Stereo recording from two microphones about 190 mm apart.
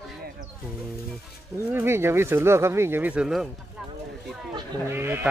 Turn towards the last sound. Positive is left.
turn(degrees=-10)  # may be behind; listen again after turning